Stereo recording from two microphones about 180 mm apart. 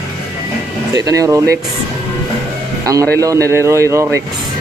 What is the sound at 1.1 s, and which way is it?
Speech, 15° right (ahead or behind).